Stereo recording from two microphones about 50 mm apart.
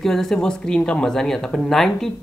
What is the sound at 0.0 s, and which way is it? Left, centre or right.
Speech, centre.